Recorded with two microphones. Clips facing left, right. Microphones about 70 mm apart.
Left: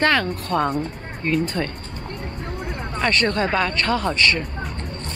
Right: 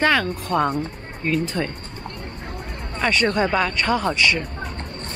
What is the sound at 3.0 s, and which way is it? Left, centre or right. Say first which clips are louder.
Speech: right 1 dB; centre.